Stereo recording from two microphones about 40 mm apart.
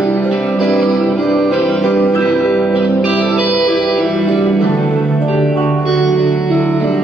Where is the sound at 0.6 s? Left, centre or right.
Centre.